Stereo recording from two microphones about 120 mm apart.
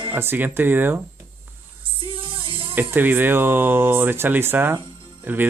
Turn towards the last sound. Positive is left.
turn(degrees=-15)  # may be behind; listen again after turning